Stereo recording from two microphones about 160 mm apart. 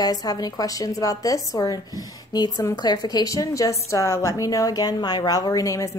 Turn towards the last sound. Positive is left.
turn(degrees=20)  # may be behind; listen again after turning